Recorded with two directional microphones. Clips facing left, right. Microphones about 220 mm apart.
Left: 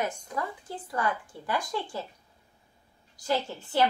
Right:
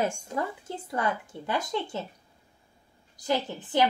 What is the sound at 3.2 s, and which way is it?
Speech, 20° right (ahead or behind).